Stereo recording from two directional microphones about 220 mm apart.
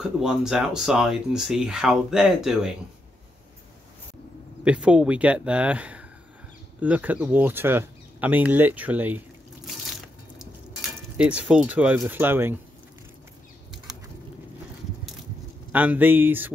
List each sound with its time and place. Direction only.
0.0 s speech: 5° right (ahead or behind)
4.6 s speech: 5° right (ahead or behind)
10.4 s speech: 5° right (ahead or behind)
15.7 s speech: 5° right (ahead or behind)